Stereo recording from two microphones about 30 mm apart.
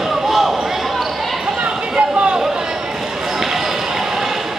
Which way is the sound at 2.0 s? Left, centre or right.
Right.